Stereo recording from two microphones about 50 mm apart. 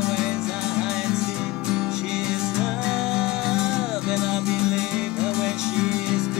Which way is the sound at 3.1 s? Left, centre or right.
Centre.